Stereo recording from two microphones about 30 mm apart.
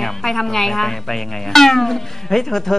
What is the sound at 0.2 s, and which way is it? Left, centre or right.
A woman's voice, centre.